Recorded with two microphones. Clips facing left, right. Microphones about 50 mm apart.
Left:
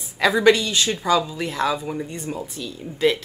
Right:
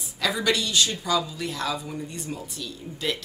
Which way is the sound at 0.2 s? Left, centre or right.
Left.